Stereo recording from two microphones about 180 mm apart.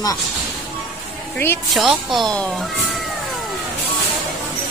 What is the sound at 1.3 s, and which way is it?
Speech, 10° left (ahead or behind).